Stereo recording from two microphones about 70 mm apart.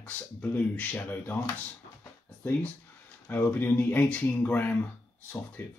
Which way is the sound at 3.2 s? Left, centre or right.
Left.